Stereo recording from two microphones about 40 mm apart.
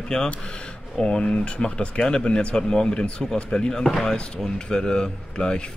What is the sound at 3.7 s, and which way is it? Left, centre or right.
Speech, centre.